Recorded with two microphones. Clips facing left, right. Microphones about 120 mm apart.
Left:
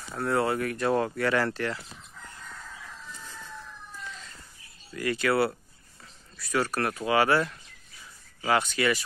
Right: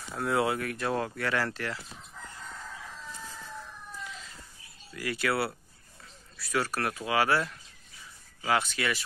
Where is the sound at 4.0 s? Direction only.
Centre (ahead or behind).